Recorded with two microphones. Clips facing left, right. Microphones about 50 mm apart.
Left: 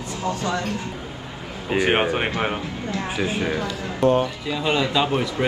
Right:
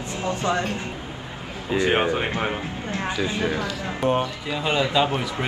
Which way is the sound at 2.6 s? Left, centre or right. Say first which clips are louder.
Left 1 dB; right.